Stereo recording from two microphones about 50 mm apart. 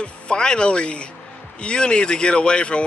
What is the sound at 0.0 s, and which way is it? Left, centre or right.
Speech, centre.